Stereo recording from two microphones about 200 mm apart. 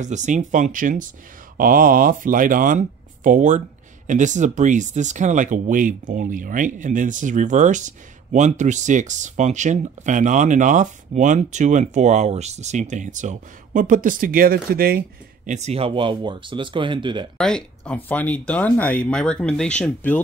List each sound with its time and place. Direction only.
0.0 s speech: 35° right (ahead or behind)
17.4 s speech: 5° left (ahead or behind)